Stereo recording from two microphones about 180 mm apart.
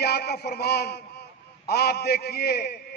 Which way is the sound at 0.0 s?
65° left (ahead or behind).